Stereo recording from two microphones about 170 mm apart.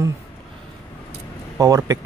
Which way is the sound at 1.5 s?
20° right (ahead or behind).